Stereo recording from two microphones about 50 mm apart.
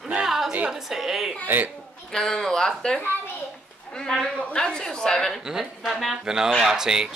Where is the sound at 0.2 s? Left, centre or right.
Centre.